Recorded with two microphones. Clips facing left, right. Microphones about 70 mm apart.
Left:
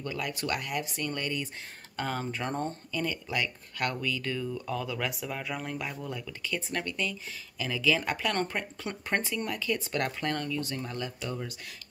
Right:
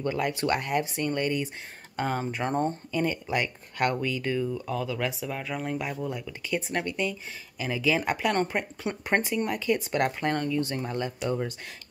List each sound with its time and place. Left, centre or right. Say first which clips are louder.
0.0 s speech: right 7 dB; right
4.6 s speech: right 3 dB; centre; by 11.5 s right